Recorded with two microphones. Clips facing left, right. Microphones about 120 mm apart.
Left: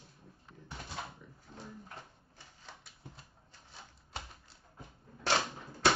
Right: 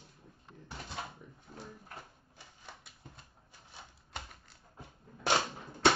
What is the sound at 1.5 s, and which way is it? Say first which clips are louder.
Drawer open or close: even; centre (ahead or behind).